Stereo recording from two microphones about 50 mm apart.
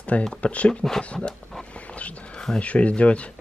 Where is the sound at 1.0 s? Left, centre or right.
Left.